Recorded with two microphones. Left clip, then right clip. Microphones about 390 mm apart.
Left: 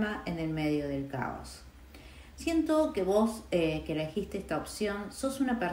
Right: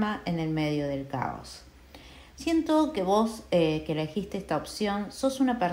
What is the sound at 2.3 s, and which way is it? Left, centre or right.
Speech, right.